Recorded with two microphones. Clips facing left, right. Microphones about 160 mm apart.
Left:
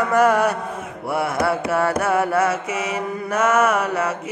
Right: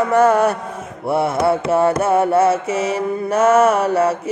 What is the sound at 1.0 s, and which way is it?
Mantra, 25° right (ahead or behind).